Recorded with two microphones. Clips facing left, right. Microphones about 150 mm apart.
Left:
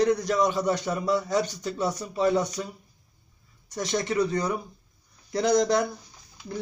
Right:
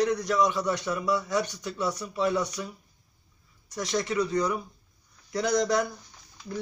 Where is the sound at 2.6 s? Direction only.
40° left (ahead or behind).